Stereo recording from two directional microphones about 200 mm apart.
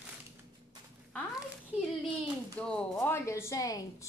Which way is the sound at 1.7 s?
5° right (ahead or behind).